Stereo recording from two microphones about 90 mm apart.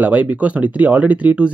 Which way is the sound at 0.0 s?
15° right (ahead or behind).